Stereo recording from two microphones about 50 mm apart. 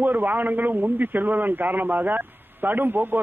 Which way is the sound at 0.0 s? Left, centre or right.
Right.